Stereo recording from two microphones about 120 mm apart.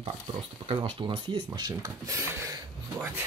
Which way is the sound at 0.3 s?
45° right (ahead or behind).